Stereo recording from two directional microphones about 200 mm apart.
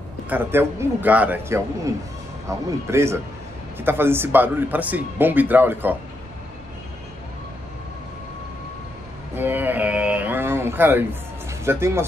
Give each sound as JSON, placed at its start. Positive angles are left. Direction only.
{"t": 0.3, "sound": "speech", "side_deg": -10}
{"t": 9.3, "sound": "a sound", "side_deg": -10}
{"t": 11.6, "sound": "speech", "side_deg": -10}